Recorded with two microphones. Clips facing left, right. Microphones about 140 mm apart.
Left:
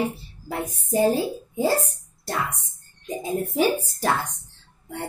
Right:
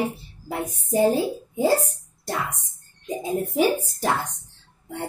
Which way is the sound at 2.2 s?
15° right (ahead or behind).